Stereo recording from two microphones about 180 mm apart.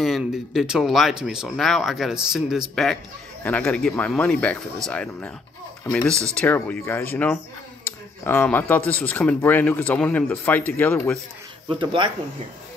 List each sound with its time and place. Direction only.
0.0 s speech: centre (ahead or behind)
11.7 s speech: 25° right (ahead or behind)